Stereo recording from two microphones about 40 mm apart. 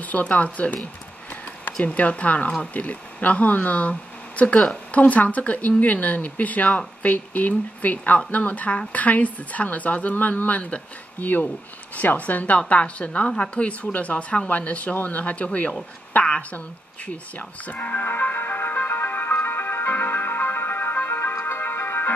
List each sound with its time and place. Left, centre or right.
0.0 s speech: left
16.5 s music: left